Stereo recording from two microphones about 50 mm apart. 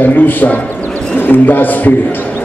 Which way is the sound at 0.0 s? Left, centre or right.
Left.